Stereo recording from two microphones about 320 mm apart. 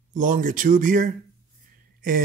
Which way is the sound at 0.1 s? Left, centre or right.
Right.